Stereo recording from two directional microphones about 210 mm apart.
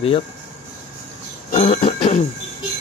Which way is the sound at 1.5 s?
30° left (ahead or behind).